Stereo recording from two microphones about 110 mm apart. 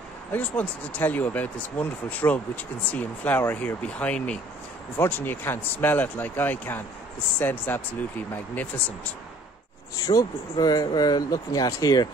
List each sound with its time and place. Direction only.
0.3 s speech: 15° left (ahead or behind)
10.0 s speech: 35° left (ahead or behind)